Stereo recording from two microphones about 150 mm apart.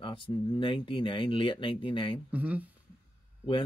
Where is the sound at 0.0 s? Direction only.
35° left (ahead or behind).